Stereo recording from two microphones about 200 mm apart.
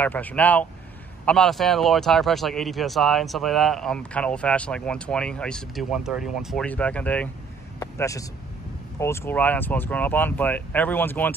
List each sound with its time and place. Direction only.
0.0 s speech: 10° left (ahead or behind)